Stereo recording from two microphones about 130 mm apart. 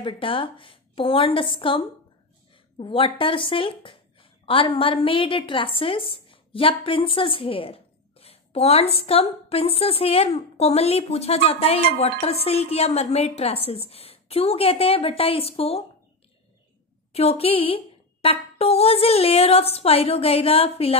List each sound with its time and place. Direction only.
0.0 s a woman's voice: 45° left (ahead or behind)
2.8 s a woman's voice: 45° left (ahead or behind)
17.1 s a woman's voice: 55° left (ahead or behind)